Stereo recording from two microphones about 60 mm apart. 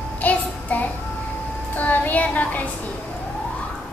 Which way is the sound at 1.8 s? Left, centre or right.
Left.